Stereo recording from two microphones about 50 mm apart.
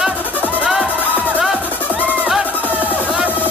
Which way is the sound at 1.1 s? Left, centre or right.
Right.